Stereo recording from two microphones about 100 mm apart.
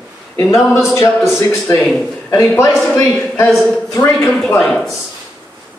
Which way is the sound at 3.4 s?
Centre (ahead or behind).